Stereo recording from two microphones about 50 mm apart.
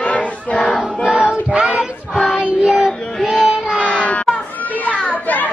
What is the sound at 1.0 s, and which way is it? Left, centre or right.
Child singing, centre.